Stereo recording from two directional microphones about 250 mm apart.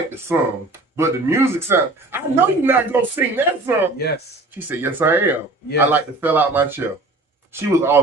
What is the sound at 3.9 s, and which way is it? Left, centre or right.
Speech, left.